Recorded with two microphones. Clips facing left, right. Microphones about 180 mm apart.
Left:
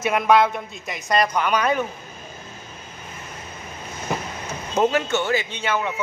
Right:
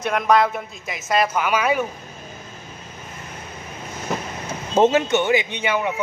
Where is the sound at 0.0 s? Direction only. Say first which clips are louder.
Left 1 dB; 5° left (ahead or behind).